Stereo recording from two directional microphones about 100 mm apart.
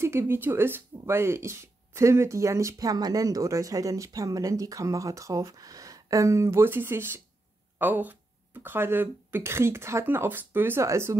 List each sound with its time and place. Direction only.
0.0 s speech: 25° right (ahead or behind)